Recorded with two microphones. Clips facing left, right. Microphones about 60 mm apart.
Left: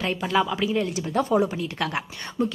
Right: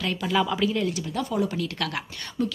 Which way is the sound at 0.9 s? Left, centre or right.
Left.